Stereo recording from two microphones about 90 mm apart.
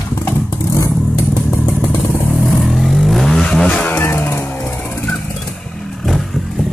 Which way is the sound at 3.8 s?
25° left (ahead or behind).